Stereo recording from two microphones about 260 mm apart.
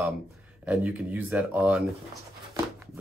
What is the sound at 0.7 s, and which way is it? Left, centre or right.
Speech, centre.